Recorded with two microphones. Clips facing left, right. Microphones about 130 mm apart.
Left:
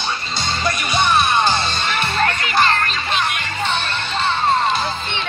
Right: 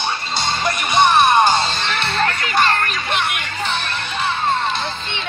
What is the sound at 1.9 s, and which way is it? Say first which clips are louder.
Music: left 2 dB; 10° left (ahead or behind).